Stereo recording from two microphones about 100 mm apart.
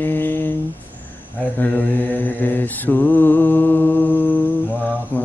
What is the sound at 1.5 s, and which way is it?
Mantra, 15° left (ahead or behind).